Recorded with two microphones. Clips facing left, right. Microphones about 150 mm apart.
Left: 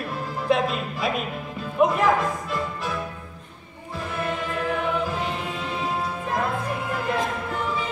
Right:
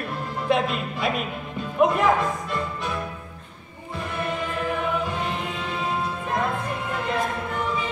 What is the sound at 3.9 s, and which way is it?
Music, centre (ahead or behind).